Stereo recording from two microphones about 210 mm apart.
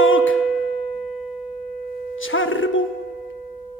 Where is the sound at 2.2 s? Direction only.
70° left (ahead or behind).